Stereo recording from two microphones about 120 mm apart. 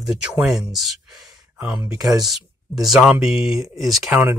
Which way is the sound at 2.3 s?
Centre (ahead or behind).